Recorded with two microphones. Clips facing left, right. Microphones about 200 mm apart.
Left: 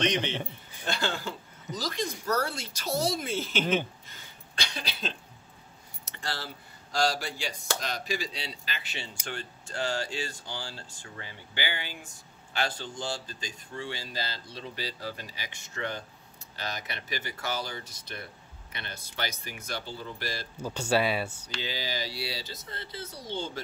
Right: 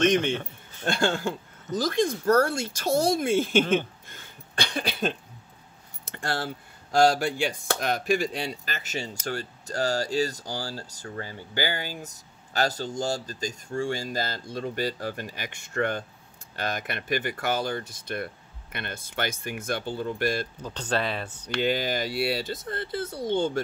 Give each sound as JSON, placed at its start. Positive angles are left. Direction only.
{"t": 0.0, "sound": "speech", "side_deg": -50}
{"t": 3.7, "sound": "a sound", "side_deg": -55}
{"t": 6.0, "sound": "speech", "side_deg": -50}
{"t": 20.5, "sound": "speech", "side_deg": 10}
{"t": 21.5, "sound": "speech", "side_deg": -55}